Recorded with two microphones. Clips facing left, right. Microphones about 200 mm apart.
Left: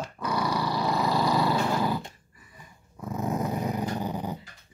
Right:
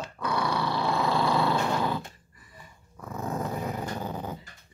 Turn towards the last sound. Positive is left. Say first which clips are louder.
# left 3 dB
turn(degrees=15)  # may be behind; listen again after turning